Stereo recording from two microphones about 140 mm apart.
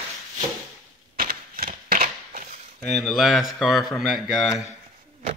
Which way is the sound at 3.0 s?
Centre (ahead or behind).